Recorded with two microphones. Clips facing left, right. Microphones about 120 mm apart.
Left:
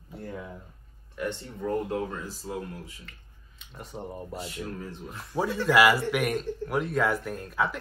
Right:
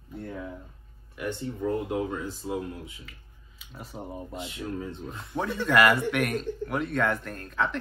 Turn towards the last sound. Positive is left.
turn(degrees=10)  # may be behind; listen again after turning